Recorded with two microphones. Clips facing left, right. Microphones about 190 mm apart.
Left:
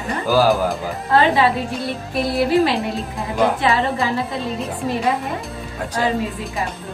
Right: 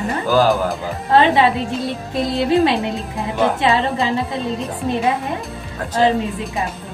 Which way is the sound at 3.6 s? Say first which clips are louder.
Right 1 dB; 20° right (ahead or behind).